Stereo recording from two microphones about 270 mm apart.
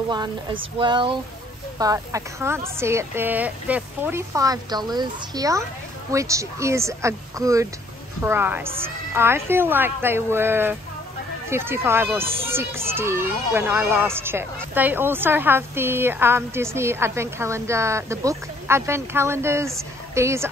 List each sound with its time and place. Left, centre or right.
0.1 s speech: centre